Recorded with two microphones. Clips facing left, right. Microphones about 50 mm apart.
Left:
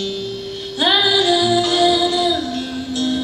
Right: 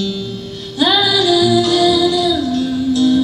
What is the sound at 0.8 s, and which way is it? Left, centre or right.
Music, centre.